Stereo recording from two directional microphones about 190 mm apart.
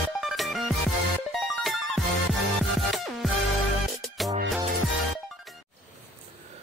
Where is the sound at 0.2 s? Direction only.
Centre (ahead or behind).